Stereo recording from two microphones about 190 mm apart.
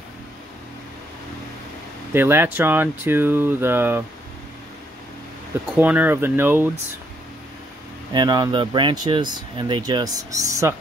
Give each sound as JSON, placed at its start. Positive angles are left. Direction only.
{"t": 2.1, "sound": "speech", "side_deg": -10}
{"t": 5.8, "sound": "speech", "side_deg": -10}
{"t": 8.1, "sound": "speech", "side_deg": -20}